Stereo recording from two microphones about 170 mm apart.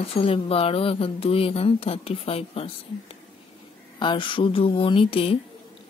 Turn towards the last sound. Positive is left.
turn(degrees=35)  # may be behind; listen again after turning